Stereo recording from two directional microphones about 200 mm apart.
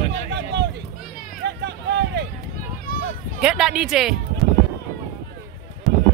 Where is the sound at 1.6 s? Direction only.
55° right (ahead or behind).